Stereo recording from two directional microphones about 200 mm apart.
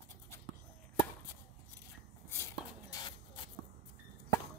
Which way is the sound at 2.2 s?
15° left (ahead or behind).